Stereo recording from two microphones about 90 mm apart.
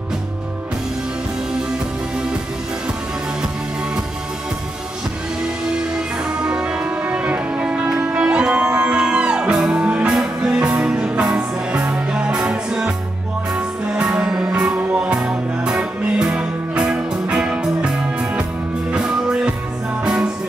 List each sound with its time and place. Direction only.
5.8 s music: 10° right (ahead or behind)
15.1 s music: 5° right (ahead or behind)